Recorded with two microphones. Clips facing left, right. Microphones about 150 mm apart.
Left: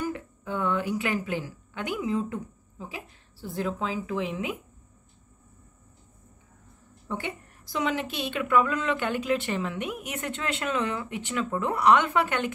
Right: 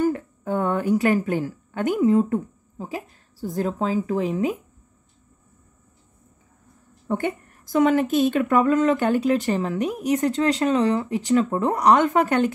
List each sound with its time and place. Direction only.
0.0 s a woman's voice: 45° right (ahead or behind)
7.1 s a woman's voice: 50° right (ahead or behind)